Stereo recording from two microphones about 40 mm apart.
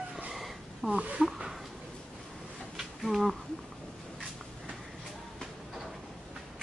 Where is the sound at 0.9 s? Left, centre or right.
Right.